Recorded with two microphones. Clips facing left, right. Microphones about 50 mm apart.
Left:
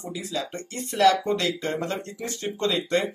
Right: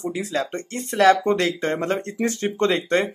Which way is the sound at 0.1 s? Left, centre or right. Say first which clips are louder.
Right 6 dB; right.